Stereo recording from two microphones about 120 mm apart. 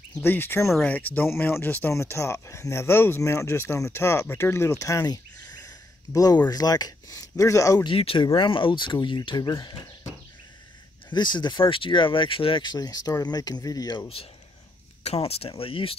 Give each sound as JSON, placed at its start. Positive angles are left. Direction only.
{"t": 0.2, "sound": "speech", "side_deg": 20}
{"t": 7.8, "sound": "speech", "side_deg": 50}
{"t": 9.5, "sound": "speech", "side_deg": 30}
{"t": 11.1, "sound": "speech", "side_deg": 40}
{"t": 15.0, "sound": "speech", "side_deg": 55}